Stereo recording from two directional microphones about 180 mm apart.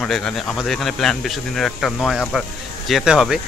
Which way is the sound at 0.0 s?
5° left (ahead or behind).